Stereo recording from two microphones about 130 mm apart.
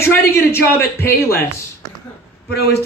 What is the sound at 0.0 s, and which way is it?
Speech, 20° left (ahead or behind).